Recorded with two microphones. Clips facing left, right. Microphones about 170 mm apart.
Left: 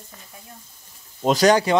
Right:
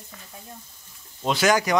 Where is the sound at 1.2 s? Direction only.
40° left (ahead or behind).